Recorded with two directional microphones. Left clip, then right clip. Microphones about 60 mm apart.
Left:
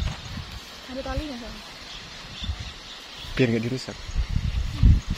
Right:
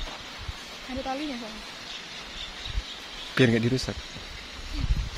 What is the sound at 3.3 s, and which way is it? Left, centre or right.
Speech, right.